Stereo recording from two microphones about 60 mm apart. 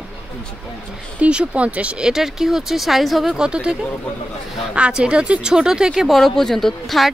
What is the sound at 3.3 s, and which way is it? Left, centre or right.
Speech, centre.